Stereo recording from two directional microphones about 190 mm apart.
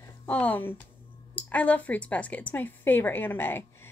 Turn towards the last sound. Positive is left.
turn(degrees=10)  # may be behind; listen again after turning